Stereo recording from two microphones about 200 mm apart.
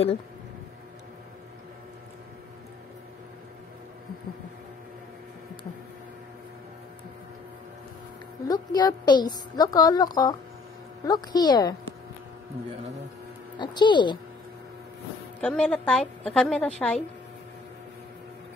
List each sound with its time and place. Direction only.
8.5 s a woman's voice: 20° left (ahead or behind)
13.6 s speech: 20° left (ahead or behind)
15.4 s a woman's voice: 5° left (ahead or behind)